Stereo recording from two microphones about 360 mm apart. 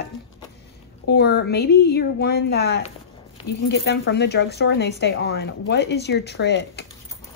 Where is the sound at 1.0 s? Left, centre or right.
Left.